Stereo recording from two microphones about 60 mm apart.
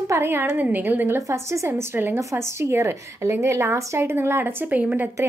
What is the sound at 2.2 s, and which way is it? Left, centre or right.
A woman's voice, right.